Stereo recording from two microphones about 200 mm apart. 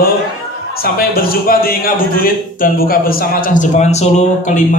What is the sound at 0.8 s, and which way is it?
A man's voice, 50° left (ahead or behind).